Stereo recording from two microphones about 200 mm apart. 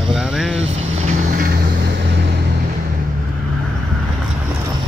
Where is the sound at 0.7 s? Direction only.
30° right (ahead or behind); by 2.0 s 50° right (ahead or behind).